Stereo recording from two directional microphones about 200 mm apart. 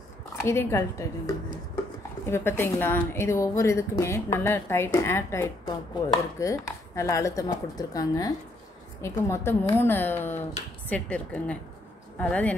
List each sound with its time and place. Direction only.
0.4 s a woman's voice: 15° left (ahead or behind)